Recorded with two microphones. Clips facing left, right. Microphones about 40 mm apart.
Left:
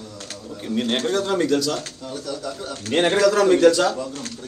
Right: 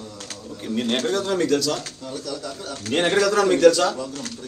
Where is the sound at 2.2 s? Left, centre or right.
Left.